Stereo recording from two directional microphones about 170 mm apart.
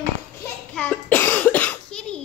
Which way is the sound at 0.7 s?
10° left (ahead or behind).